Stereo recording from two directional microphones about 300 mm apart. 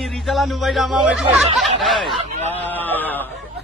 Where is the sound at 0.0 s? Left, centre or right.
Centre.